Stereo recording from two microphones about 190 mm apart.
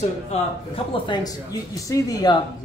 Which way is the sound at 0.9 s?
25° left (ahead or behind).